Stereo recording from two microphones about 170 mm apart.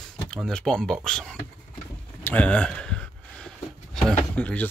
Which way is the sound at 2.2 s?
10° left (ahead or behind).